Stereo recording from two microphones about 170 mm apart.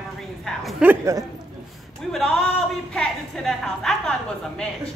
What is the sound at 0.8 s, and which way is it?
Speech, 15° right (ahead or behind).